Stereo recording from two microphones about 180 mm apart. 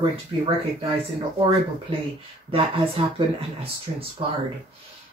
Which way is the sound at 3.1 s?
30° right (ahead or behind).